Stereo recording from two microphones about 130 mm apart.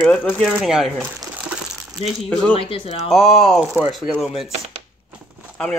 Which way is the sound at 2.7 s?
55° left (ahead or behind).